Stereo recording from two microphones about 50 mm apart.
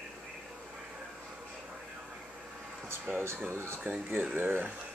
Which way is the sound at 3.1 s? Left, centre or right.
Right.